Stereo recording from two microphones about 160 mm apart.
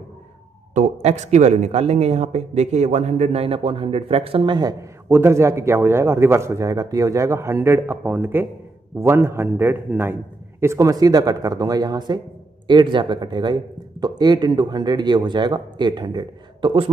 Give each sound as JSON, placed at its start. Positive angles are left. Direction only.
{"t": 0.7, "sound": "speech", "side_deg": -50}
{"t": 5.0, "sound": "a man's voice", "side_deg": -15}